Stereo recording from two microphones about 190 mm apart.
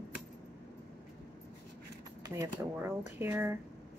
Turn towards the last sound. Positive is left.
turn(degrees=-10)  # may be behind; listen again after turning